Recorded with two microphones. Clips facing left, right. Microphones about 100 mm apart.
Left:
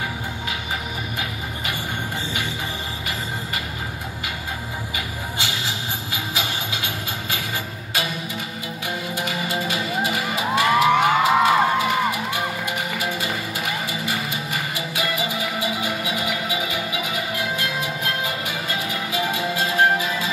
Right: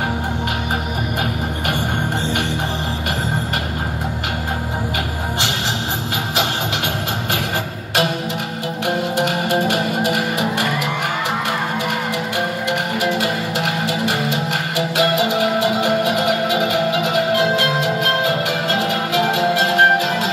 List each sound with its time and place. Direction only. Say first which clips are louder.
6.3 s music: right 7 dB; 65° right (ahead or behind)
8.8 s music: right 9 dB; 65° right (ahead or behind)